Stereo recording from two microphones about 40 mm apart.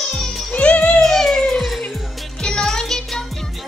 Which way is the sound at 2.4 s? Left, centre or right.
Centre.